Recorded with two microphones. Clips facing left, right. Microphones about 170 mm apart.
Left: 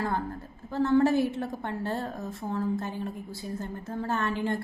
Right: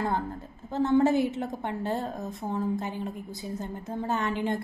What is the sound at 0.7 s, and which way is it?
A woman's voice, 20° right (ahead or behind).